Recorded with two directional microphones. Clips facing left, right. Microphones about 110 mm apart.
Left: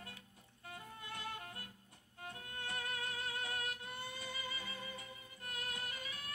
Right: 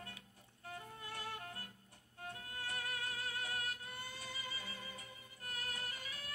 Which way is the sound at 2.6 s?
25° left (ahead or behind).